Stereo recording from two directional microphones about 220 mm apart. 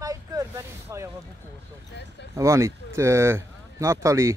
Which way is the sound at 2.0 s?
50° left (ahead or behind).